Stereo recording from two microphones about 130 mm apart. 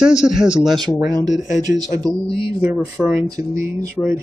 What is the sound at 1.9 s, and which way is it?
Speech, 25° right (ahead or behind).